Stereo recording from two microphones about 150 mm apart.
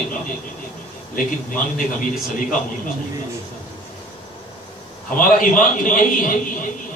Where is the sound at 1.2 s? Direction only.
70° left (ahead or behind).